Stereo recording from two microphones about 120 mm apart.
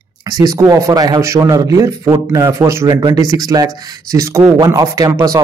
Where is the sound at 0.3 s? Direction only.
30° right (ahead or behind).